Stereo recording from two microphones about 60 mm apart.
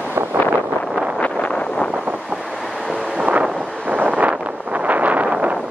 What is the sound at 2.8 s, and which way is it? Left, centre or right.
Wind noise, centre.